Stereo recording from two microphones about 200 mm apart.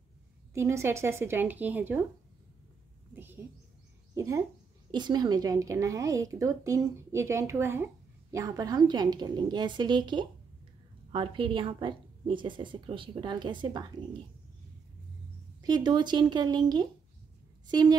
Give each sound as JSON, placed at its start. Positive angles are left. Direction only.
{"t": 0.6, "sound": "a woman's voice", "side_deg": -15}
{"t": 4.1, "sound": "a woman's voice", "side_deg": -15}
{"t": 15.6, "sound": "a woman's voice", "side_deg": -20}